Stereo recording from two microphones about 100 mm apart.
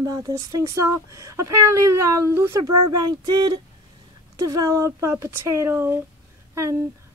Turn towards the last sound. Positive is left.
turn(degrees=-30)  # may be behind; listen again after turning